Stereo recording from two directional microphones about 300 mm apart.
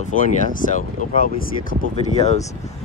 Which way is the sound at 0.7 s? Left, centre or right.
Left.